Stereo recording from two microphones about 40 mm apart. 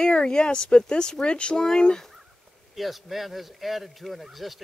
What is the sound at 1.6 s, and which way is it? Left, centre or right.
Speech, centre.